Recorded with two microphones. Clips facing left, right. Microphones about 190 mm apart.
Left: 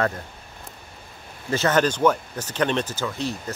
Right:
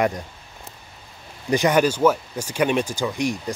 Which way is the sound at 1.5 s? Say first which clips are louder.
Right 3 dB; 15° right (ahead or behind).